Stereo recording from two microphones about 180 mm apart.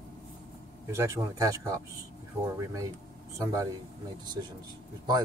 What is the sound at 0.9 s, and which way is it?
Speech, 15° right (ahead or behind).